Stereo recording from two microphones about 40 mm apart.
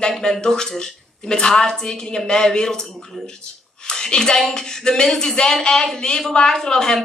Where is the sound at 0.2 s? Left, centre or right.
Centre.